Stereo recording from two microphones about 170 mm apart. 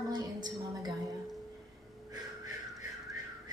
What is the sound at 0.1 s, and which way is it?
Music, 25° right (ahead or behind).